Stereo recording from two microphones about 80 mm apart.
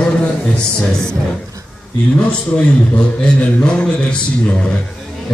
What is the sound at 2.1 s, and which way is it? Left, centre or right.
A man's voice, centre.